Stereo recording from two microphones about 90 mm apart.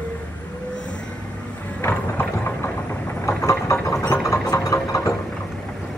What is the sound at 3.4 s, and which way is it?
Engine, 35° left (ahead or behind).